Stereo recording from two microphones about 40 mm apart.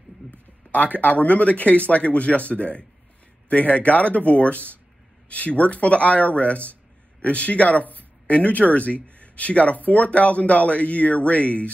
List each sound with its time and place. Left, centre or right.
0.7 s speech: left